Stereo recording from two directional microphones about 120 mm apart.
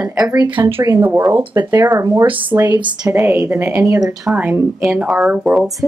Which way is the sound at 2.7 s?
35° right (ahead or behind).